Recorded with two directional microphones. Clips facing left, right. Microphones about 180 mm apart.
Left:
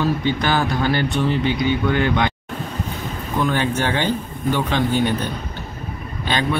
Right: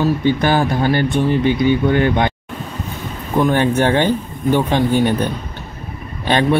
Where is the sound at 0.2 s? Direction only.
50° right (ahead or behind).